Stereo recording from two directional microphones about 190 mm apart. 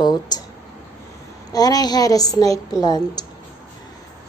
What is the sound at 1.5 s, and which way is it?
A woman's voice, 20° left (ahead or behind).